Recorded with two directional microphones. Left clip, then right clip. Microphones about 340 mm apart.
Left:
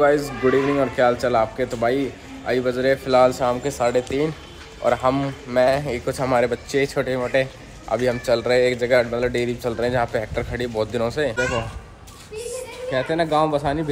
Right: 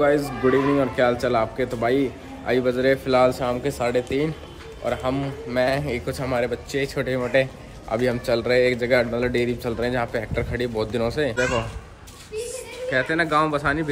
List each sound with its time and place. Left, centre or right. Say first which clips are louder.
0.0 s a man's voice: left 2 dB; centre
4.8 s speech: left 6 dB; centre